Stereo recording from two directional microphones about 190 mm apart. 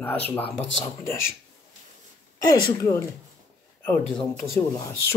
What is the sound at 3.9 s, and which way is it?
Speech, 5° left (ahead or behind).